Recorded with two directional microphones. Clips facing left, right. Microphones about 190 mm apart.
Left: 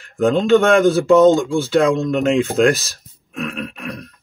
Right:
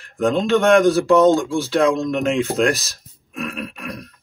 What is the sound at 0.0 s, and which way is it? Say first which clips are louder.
Speech: left 3 dB; centre (ahead or behind).